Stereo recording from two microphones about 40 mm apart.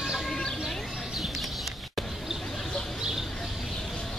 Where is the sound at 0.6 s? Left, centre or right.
Centre.